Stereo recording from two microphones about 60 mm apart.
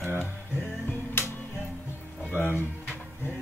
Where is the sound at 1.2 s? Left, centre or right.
Left.